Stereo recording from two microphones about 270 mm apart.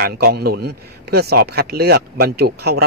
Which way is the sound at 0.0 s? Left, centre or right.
Right.